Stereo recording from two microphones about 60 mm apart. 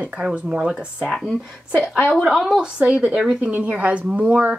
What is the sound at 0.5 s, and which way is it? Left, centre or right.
Speech, centre.